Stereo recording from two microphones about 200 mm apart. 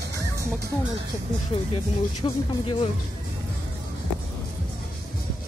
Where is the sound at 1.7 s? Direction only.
25° left (ahead or behind).